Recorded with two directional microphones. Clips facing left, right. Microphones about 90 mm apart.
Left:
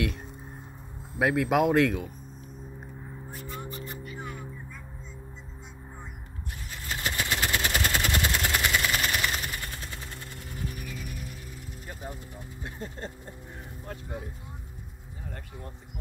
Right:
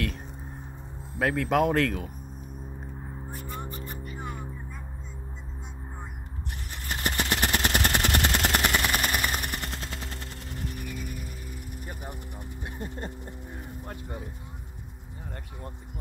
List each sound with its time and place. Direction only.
1.2 s speech: 10° left (ahead or behind)
6.9 s vehicle: 55° right (ahead or behind)
10.7 s music: 65° right (ahead or behind)
12.6 s a sound: 15° right (ahead or behind)